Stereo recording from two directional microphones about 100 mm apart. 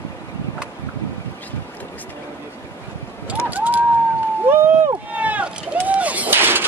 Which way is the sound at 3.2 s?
15° right (ahead or behind).